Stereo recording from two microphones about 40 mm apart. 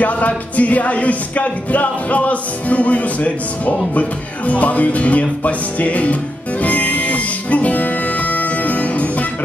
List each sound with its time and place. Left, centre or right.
0.0 s music: left